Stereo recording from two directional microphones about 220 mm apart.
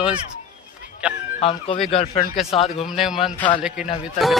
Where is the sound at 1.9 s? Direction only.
35° left (ahead or behind).